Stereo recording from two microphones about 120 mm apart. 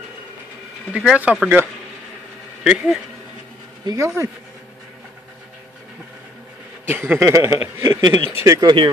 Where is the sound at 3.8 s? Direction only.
35° right (ahead or behind).